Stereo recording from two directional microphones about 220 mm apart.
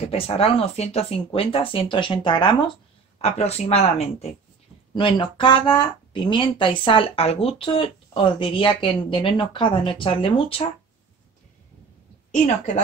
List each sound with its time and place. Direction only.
0.1 s speech: 25° left (ahead or behind)